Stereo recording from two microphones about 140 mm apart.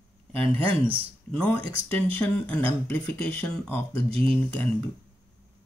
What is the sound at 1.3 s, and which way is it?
Speech, 10° left (ahead or behind).